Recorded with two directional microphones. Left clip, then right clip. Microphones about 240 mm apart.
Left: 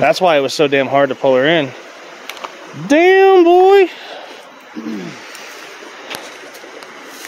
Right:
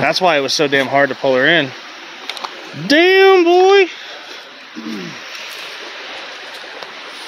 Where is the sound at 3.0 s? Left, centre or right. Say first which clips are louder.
Left 2 dB; centre.